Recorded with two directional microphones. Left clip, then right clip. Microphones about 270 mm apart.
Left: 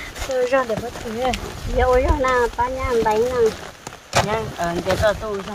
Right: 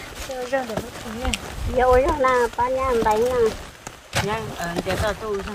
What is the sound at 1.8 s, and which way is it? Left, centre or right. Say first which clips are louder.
Speech: right 1 dB; centre.